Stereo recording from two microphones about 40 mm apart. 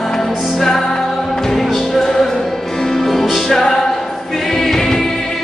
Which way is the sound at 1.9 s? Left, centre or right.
Centre.